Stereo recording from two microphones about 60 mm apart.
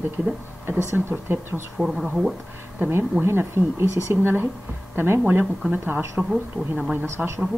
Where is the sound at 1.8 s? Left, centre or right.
Centre.